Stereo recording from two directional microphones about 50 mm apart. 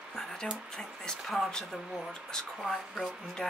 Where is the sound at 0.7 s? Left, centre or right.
Centre.